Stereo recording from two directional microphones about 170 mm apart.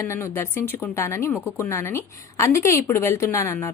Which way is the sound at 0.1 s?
15° left (ahead or behind).